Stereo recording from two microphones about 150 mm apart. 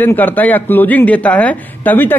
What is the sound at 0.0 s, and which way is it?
A woman's voice, 10° left (ahead or behind).